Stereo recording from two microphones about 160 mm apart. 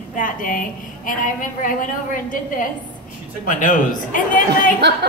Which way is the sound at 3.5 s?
55° left (ahead or behind).